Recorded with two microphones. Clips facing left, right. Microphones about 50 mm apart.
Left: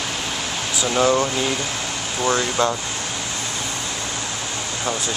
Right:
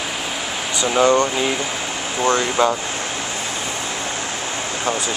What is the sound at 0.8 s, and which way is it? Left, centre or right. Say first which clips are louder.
Speech: right 3 dB; centre.